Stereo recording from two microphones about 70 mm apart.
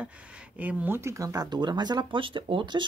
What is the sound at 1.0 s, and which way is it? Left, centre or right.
Speech, right.